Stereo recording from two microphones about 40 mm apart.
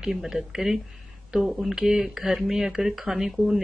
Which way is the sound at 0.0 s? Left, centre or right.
Centre.